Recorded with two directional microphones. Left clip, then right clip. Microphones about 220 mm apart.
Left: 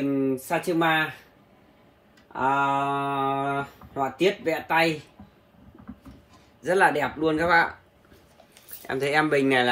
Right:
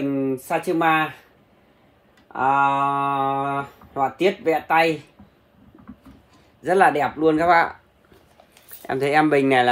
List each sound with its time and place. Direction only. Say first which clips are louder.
0.1 s speech: right 2 dB; 30° right (ahead or behind)
2.3 s speech: right 5 dB; 35° right (ahead or behind)
6.6 s speech: right 4 dB; 35° right (ahead or behind)
8.8 s speech: right 5 dB; 40° right (ahead or behind)